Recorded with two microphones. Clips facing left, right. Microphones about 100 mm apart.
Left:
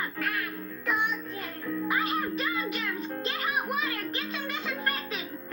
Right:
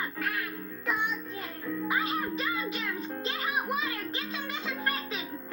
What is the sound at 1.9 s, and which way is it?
Music, 25° right (ahead or behind).